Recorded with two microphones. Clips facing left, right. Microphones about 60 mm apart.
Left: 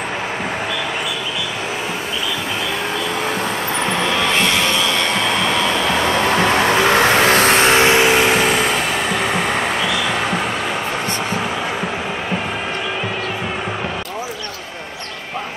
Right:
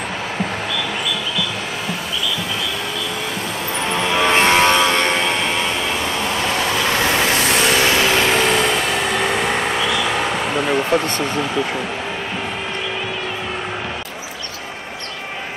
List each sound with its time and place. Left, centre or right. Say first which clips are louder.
4.3 s music: right 3 dB; right
6.1 s vehicle: left 5 dB; left; by 10.3 s centre